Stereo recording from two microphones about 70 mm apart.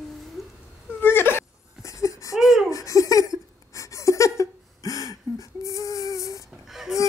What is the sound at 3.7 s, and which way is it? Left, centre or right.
Gasp, left.